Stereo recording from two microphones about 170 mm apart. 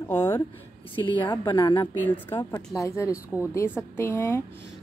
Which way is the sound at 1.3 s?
25° left (ahead or behind).